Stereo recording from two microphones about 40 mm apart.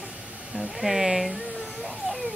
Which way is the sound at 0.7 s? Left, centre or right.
Centre.